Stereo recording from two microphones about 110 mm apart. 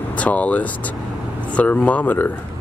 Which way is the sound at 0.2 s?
15° left (ahead or behind).